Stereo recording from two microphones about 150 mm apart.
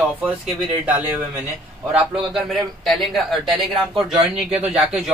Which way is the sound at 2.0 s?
Centre (ahead or behind).